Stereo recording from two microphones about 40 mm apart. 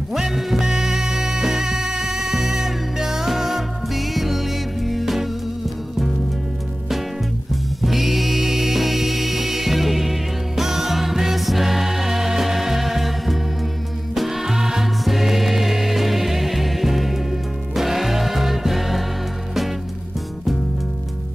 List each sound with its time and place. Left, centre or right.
0.1 s music: centre
7.8 s music: centre